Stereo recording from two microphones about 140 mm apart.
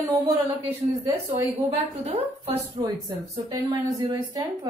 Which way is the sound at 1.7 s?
45° right (ahead or behind).